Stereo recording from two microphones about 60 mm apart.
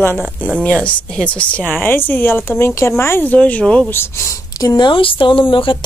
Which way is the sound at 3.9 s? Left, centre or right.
Left.